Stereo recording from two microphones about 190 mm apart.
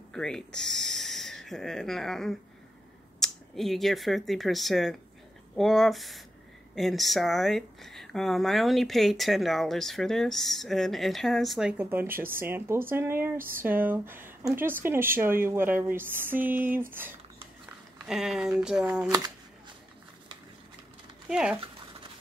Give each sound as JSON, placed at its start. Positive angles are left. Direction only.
{"t": 0.1, "sound": "speech", "side_deg": 5}
{"t": 19.0, "sound": "speech", "side_deg": -20}
{"t": 21.3, "sound": "speech", "side_deg": -5}